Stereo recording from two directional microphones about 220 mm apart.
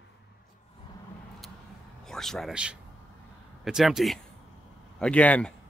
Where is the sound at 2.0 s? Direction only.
Centre (ahead or behind).